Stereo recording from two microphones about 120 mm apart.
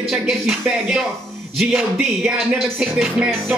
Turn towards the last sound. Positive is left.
turn(degrees=0)  # may be behind; listen again after turning